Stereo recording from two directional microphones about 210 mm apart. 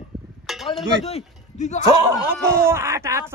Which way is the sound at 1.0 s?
30° left (ahead or behind).